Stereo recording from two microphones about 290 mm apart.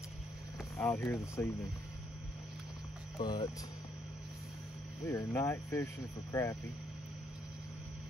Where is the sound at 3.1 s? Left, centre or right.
Centre.